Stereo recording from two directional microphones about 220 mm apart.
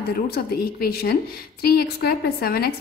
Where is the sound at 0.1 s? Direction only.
45° left (ahead or behind).